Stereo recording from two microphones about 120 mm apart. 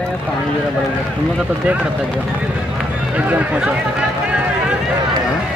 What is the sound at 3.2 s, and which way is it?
Speech, 10° right (ahead or behind).